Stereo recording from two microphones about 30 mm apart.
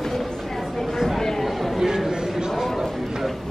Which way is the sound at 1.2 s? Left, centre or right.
Centre.